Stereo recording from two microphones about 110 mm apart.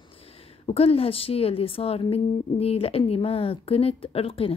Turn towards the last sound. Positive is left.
turn(degrees=60)  # may be behind; listen again after turning